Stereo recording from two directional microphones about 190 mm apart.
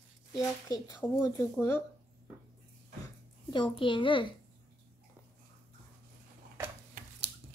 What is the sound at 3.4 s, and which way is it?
Speech, 25° left (ahead or behind).